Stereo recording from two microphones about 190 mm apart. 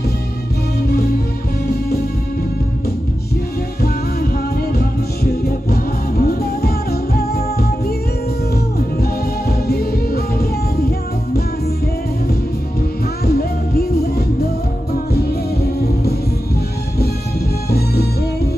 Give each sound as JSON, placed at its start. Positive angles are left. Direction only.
{"t": 3.8, "sound": "music", "side_deg": 55}
{"t": 9.7, "sound": "music", "side_deg": 55}
{"t": 13.2, "sound": "music", "side_deg": 55}
{"t": 17.6, "sound": "music", "side_deg": 55}